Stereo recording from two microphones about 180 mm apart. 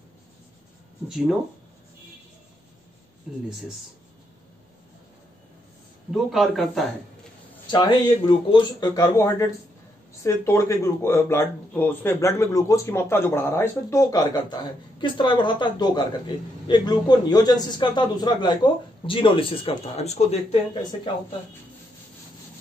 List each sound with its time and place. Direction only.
1.0 s speech: 5° right (ahead or behind)
6.3 s a man's voice: centre (ahead or behind)
7.7 s a man's voice: 25° left (ahead or behind)